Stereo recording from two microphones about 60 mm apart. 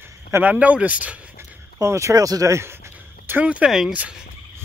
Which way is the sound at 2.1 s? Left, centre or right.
Right.